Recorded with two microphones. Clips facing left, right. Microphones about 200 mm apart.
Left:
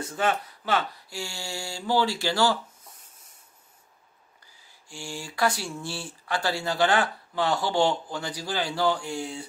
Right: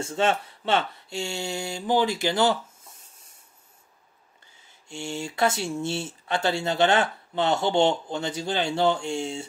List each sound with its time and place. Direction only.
0.0 s speech: 25° right (ahead or behind)
4.8 s speech: 25° right (ahead or behind)